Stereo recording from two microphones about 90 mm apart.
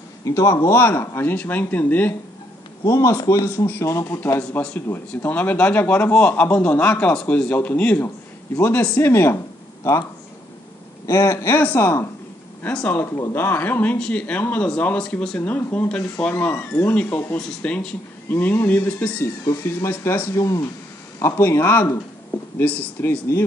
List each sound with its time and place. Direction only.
0.2 s speech: 35° left (ahead or behind)
2.8 s a man's voice: 35° left (ahead or behind)
4.4 s speech: 20° left (ahead or behind)
11.1 s speech: 30° left (ahead or behind); by 16.3 s 10° left (ahead or behind)
16.3 s speech: 25° left (ahead or behind)
17.4 s speech: 10° left (ahead or behind); by 23.4 s 30° left (ahead or behind)